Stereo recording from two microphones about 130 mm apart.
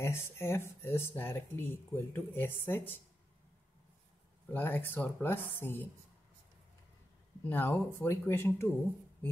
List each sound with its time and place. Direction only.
0.0 s speech: 20° left (ahead or behind)
4.5 s speech: 15° left (ahead or behind)
7.4 s speech: 15° left (ahead or behind)